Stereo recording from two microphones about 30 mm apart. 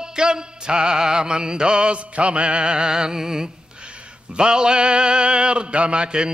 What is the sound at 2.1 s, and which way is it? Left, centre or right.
Music, right.